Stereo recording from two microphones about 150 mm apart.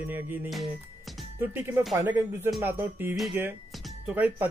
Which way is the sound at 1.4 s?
15° right (ahead or behind).